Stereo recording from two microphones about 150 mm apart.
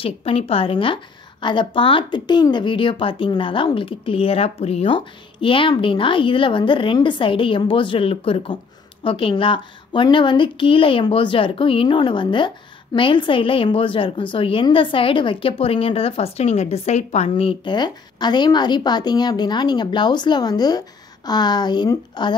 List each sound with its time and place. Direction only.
0.0 s a woman's voice: 40° left (ahead or behind)